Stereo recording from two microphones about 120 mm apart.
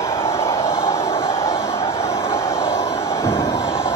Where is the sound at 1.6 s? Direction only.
20° left (ahead or behind).